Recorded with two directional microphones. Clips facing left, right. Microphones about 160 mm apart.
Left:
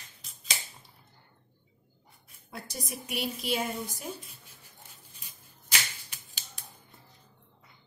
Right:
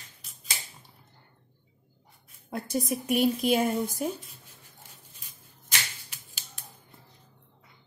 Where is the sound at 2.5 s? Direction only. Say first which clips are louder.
Right 10 dB; 50° right (ahead or behind).